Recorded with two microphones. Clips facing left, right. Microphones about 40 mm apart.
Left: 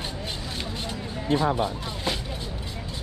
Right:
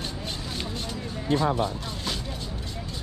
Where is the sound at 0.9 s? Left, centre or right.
Left.